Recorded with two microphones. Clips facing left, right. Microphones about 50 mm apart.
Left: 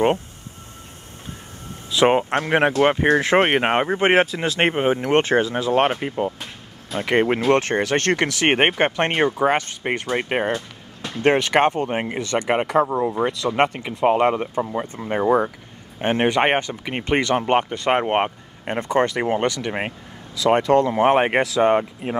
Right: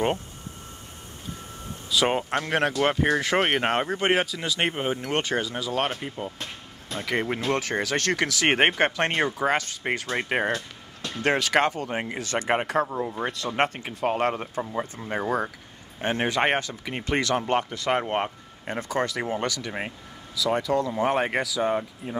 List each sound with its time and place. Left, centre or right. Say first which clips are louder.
1.9 s speech: left 7 dB; left
11.2 s speech: left 5 dB; left
13.8 s speech: left 8 dB; left
14.7 s speech: left 5 dB; left
16.0 s speech: left 6 dB; left
19.2 s speech: left 7 dB; left
19.6 s speech: left 6 dB; left
20.4 s speech: left 8 dB; left
21.5 s speech: left 8 dB; left